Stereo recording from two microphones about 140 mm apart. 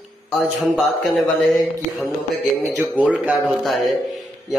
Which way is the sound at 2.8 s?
10° right (ahead or behind).